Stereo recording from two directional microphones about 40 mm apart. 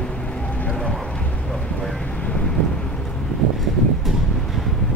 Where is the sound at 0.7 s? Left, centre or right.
Left.